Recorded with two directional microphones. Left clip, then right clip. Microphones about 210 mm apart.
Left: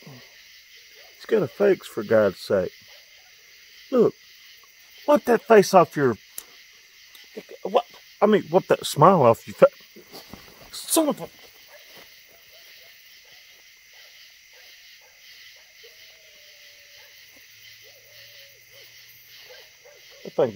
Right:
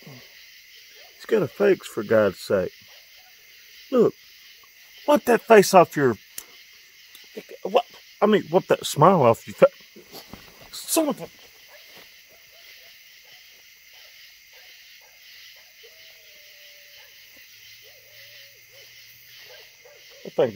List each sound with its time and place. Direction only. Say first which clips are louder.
1.2 s speech: even; 15° right (ahead or behind)
3.9 s speech: even; 10° right (ahead or behind)
10.7 s speech: left 1 dB; 20° left (ahead or behind)
20.2 s owl: even; 10° right (ahead or behind)